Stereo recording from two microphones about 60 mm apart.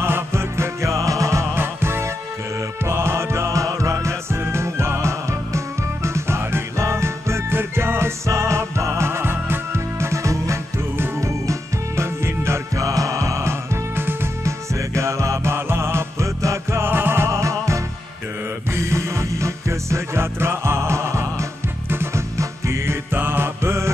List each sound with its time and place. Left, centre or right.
0.0 s music: right
1.6 s music: right
8.3 s music: right
15.0 s music: right
21.8 s music: right
23.1 s music: right